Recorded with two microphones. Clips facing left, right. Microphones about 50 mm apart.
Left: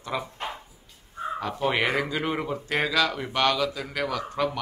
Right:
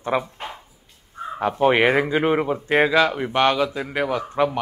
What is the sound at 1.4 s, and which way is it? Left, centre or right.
Speech, right.